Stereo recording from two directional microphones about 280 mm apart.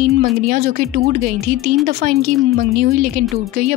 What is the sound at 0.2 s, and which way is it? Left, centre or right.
Speech, right.